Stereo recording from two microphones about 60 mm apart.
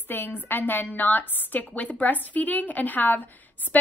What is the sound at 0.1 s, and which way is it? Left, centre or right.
A woman's voice, left.